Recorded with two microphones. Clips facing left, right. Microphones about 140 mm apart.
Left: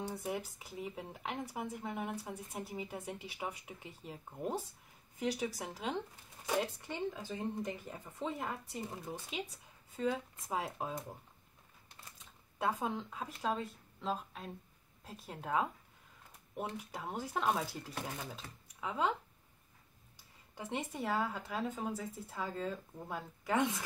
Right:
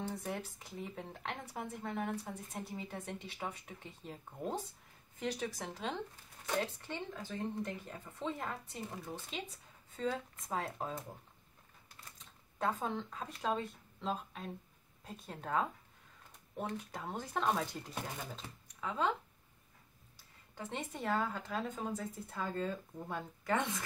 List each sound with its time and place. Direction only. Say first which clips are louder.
0.0 s speech: left 1 dB; 10° left (ahead or behind)
8.9 s speech: left 1 dB; 20° left (ahead or behind)
9.9 s speech: left 2 dB; 10° left (ahead or behind)
12.5 s speech: even; 10° left (ahead or behind)
16.7 s speech: even; 10° left (ahead or behind)
20.5 s speech: left 2 dB; 10° left (ahead or behind)